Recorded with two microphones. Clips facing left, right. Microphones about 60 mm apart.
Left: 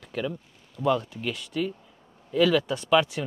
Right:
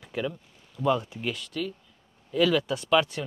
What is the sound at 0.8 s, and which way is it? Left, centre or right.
Speech, centre.